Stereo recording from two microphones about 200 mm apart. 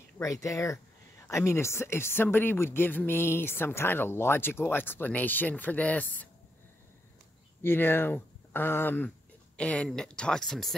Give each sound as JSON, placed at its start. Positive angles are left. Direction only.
{"t": 0.2, "sound": "speech", "side_deg": 15}
{"t": 7.6, "sound": "a woman's voice", "side_deg": 10}